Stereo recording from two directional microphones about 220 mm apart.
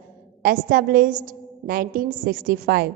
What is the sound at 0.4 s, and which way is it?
A woman's voice, 40° right (ahead or behind).